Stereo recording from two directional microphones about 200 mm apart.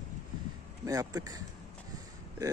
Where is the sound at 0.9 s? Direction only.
15° right (ahead or behind).